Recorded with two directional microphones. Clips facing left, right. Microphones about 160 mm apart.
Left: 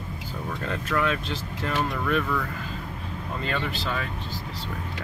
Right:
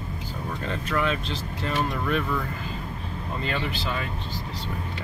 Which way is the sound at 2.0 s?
10° right (ahead or behind).